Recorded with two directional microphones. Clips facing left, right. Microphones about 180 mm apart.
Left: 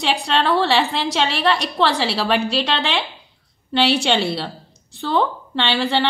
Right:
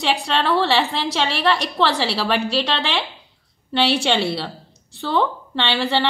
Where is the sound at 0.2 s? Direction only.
15° left (ahead or behind).